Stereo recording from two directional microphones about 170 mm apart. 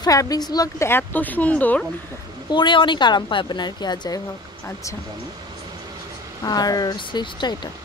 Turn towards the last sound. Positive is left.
turn(degrees=25)  # may be behind; listen again after turning